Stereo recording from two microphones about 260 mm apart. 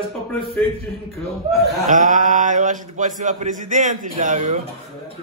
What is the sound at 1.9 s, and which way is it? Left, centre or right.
A man's voice, right.